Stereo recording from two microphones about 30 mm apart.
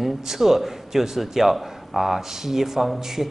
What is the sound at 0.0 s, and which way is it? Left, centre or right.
A man's voice, centre.